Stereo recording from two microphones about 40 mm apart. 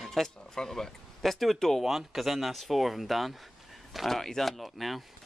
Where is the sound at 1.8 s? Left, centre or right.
Centre.